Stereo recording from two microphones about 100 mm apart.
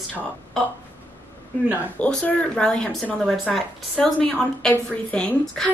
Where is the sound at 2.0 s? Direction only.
15° left (ahead or behind).